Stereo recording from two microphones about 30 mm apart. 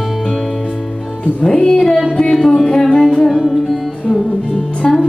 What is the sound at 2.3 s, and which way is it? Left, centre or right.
Music, centre.